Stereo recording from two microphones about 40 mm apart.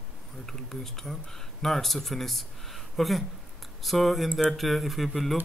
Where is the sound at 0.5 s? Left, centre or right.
Centre.